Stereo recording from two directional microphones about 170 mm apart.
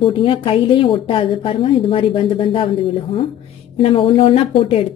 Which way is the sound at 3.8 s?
35° left (ahead or behind).